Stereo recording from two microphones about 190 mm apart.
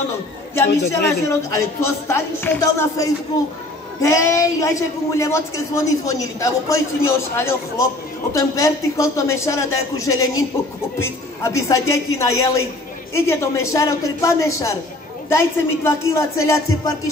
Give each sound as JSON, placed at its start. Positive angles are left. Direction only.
{"t": 1.2, "sound": "a woman's voice", "side_deg": 15}